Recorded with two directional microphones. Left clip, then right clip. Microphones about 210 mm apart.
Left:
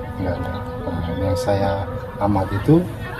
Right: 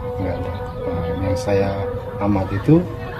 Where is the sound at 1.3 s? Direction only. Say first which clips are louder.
Right 1 dB; 20° right (ahead or behind).